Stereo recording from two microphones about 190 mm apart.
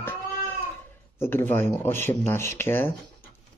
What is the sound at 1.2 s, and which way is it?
Speech, 10° left (ahead or behind).